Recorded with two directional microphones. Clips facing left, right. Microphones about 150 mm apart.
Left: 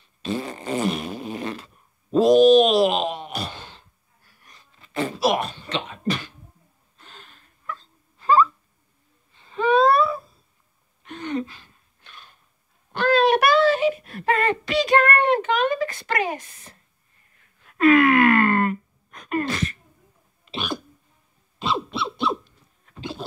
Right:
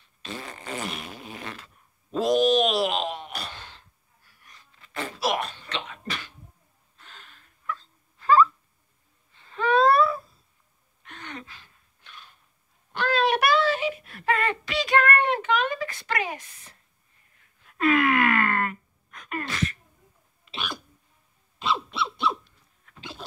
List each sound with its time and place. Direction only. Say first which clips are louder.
0.2 s fart: left 10 dB; 25° left (ahead or behind)
2.0 s sigh: left 8 dB; 30° left (ahead or behind)
4.5 s beatboxing: left 2 dB; 25° left (ahead or behind)
7.0 s a sound: left 3 dB; 30° left (ahead or behind)
12.0 s a sound: left 1 dB; 45° left (ahead or behind)
17.6 s wail: left 6 dB; 65° left (ahead or behind); by 19.8 s 35° left (ahead or behind)
20.5 s hiccup: left 6 dB; 35° left (ahead or behind)
21.5 s a sound: left 2 dB; 30° left (ahead or behind)
22.8 s bird: left 9 dB; 30° left (ahead or behind)